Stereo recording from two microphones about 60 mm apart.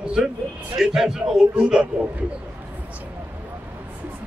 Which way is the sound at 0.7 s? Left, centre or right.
Centre.